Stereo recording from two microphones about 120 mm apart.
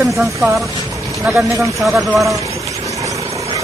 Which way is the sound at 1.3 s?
15° right (ahead or behind).